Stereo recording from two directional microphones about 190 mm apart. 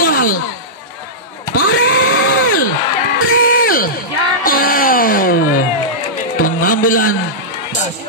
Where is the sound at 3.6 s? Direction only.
50° left (ahead or behind).